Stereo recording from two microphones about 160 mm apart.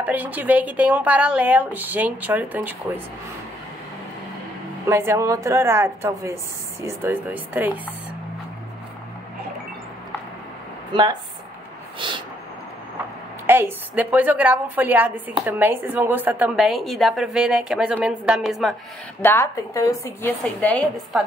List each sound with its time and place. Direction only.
0.0 s speech: 10° right (ahead or behind)
4.8 s speech: 15° right (ahead or behind)
10.9 s a woman's voice: 30° right (ahead or behind)
12.0 s vehicle: 30° right (ahead or behind)
13.5 s speech: 15° right (ahead or behind)
19.2 s a woman's voice: 15° left (ahead or behind)